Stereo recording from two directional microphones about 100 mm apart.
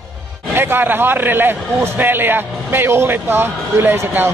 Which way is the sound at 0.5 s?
20° right (ahead or behind).